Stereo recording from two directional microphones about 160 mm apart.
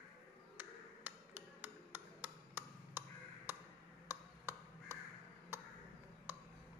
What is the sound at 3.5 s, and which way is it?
Tick-tock, 10° right (ahead or behind).